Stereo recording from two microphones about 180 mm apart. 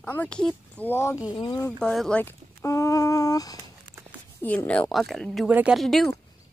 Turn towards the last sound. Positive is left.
turn(degrees=0)  # may be behind; listen again after turning